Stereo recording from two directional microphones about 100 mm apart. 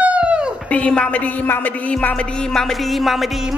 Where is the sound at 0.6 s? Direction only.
15° left (ahead or behind).